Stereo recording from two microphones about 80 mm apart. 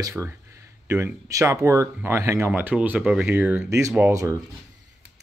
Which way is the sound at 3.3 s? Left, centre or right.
Right.